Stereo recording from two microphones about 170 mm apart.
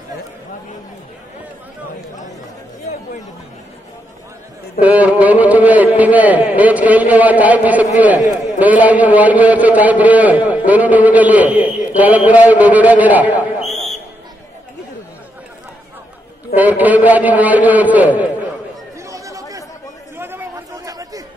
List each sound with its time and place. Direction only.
4.8 s a man's voice: 10° right (ahead or behind)
13.7 s a sound: centre (ahead or behind)
16.5 s a man's voice: 10° right (ahead or behind)
18.9 s chatter: 20° right (ahead or behind)